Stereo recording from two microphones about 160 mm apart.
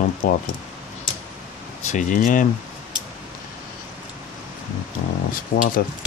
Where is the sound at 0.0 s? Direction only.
60° left (ahead or behind).